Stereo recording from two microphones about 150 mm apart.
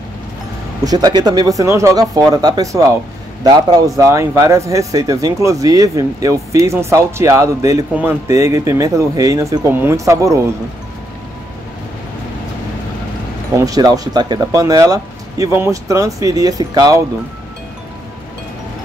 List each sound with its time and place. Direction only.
0.8 s speech: 25° right (ahead or behind)
13.6 s speech: 25° right (ahead or behind)